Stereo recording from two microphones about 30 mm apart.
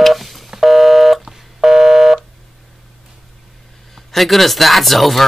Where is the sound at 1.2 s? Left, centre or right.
Centre.